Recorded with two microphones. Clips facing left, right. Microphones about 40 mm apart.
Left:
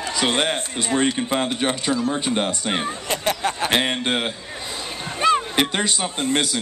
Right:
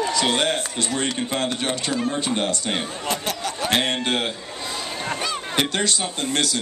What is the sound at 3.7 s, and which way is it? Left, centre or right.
Speech, centre.